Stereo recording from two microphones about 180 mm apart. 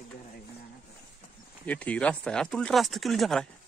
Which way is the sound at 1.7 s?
10° left (ahead or behind).